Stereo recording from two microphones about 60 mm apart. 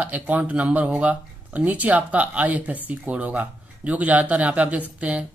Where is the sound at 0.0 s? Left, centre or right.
Right.